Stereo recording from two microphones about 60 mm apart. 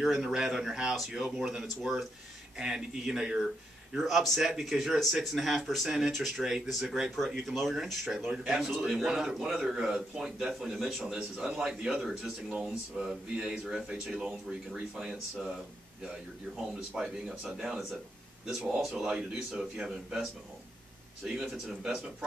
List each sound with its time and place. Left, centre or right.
0.0 s a man's voice: centre